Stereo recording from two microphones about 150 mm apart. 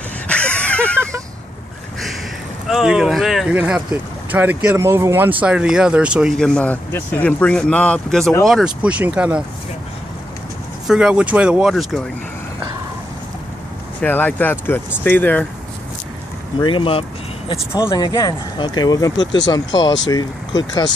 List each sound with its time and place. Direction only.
0.3 s a sound: 10° left (ahead or behind)
2.7 s speech: centre (ahead or behind)
6.3 s speech: 5° left (ahead or behind)
10.9 s speech: 5° right (ahead or behind)
14.0 s speech: 10° left (ahead or behind)
16.5 s speech: 35° left (ahead or behind)
17.7 s speech: 25° left (ahead or behind)